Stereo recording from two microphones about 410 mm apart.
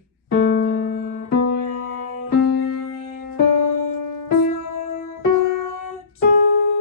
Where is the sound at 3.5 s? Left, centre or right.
Left.